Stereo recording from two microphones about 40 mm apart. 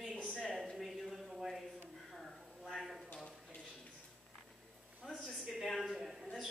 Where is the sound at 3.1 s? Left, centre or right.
Left.